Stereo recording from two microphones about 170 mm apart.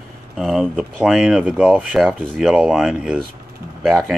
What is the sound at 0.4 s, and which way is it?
Speech, centre (ahead or behind).